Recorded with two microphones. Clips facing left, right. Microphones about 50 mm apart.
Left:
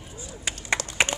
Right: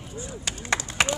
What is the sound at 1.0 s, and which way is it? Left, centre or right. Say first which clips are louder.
Clapping: even; centre.